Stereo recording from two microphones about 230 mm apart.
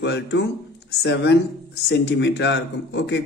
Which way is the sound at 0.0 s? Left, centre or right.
Left.